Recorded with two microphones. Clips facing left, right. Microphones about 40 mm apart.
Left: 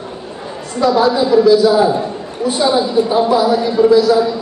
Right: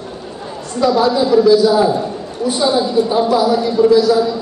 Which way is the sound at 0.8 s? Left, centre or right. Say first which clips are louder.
Left 1 dB; centre.